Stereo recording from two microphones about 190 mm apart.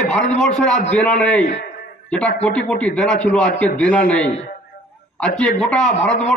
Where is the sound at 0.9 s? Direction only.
5° left (ahead or behind).